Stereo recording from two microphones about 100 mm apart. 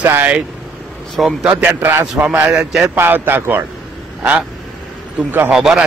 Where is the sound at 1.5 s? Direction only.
15° right (ahead or behind).